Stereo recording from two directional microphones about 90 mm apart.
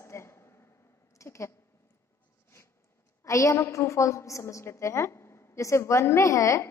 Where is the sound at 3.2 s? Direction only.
35° left (ahead or behind).